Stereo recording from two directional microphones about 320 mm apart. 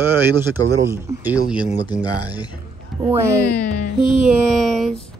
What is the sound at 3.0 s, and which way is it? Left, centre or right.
Speech, centre.